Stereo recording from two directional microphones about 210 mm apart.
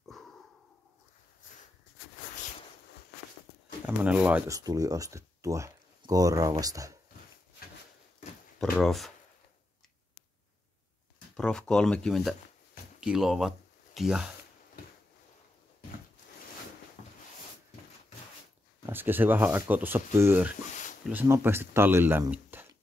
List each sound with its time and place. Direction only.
0.1 s a sound: centre (ahead or behind)
3.8 s speech: 5° right (ahead or behind)
8.7 s speech: centre (ahead or behind)
11.3 s speech: 5° left (ahead or behind)
18.9 s speech: 10° right (ahead or behind)